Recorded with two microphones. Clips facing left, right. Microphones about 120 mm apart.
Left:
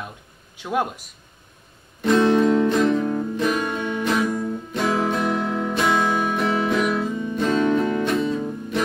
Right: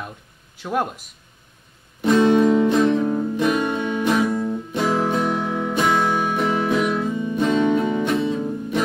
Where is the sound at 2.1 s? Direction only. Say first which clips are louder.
Right 1 dB; 20° right (ahead or behind).